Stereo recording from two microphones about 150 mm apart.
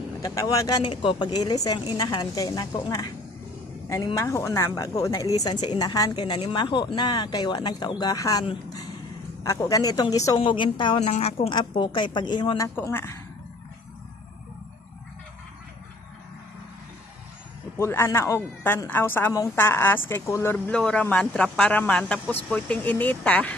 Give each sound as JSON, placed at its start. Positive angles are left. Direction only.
{"t": 0.2, "sound": "a woman's voice", "side_deg": 25}
{"t": 11.0, "sound": "a woman's voice", "side_deg": 50}
{"t": 11.5, "sound": "a woman's voice", "side_deg": 30}
{"t": 12.6, "sound": "a woman's voice", "side_deg": 15}
{"t": 17.7, "sound": "a woman's voice", "side_deg": 20}